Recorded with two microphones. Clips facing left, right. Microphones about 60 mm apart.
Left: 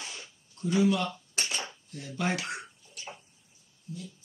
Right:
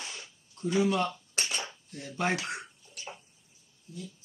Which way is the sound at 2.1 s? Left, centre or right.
Right.